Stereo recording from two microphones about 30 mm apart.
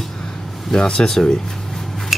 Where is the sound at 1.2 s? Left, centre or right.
Centre.